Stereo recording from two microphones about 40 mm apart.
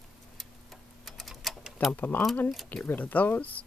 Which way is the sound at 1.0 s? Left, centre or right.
Centre.